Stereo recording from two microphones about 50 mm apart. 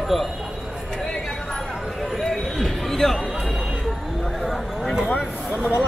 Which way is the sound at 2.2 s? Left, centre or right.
Centre.